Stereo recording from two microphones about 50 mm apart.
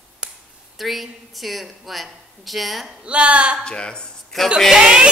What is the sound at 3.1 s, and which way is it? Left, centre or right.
Speech, right.